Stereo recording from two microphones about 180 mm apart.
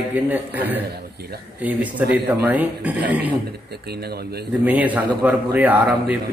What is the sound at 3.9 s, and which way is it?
Speech, 60° right (ahead or behind).